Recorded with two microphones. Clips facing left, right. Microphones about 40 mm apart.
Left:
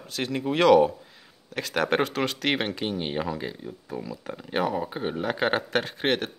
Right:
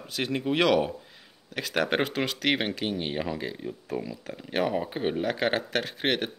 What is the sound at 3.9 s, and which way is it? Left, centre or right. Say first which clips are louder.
Speech: right 2 dB; right.